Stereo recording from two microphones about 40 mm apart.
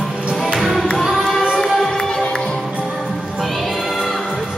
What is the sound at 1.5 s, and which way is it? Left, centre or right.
Music, centre.